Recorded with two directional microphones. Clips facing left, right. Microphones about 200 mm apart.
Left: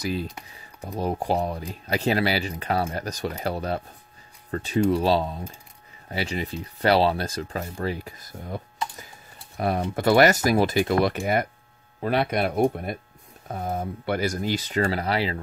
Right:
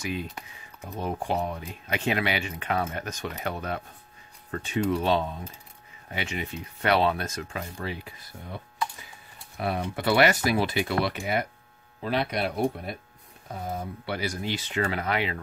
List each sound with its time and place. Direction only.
0.0 s speech: 35° left (ahead or behind)